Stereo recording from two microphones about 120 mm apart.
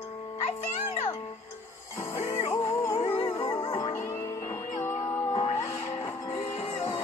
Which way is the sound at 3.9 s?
25° left (ahead or behind).